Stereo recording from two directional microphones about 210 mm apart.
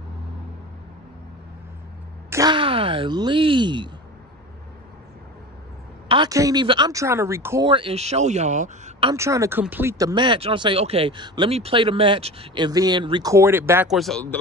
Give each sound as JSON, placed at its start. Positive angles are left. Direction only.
{"t": 2.2, "sound": "speech", "side_deg": -15}
{"t": 6.0, "sound": "speech", "side_deg": -20}
{"t": 9.1, "sound": "speech", "side_deg": -15}
{"t": 13.9, "sound": "speech", "side_deg": 0}